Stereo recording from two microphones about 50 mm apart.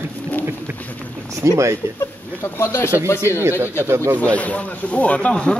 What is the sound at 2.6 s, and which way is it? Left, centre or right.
Speech, left.